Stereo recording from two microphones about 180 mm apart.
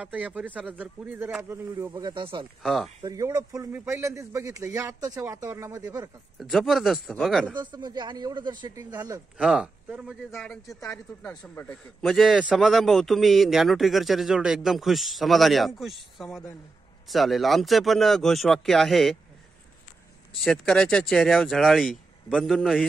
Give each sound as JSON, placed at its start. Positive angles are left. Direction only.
{"t": 0.0, "sound": "a man's voice", "side_deg": -5}
{"t": 2.6, "sound": "a man's voice", "side_deg": 0}
{"t": 3.0, "sound": "a man's voice", "side_deg": -20}
{"t": 6.4, "sound": "a man's voice", "side_deg": 0}
{"t": 7.5, "sound": "speech", "side_deg": -25}
{"t": 9.4, "sound": "a man's voice", "side_deg": -5}
{"t": 20.3, "sound": "a man's voice", "side_deg": 0}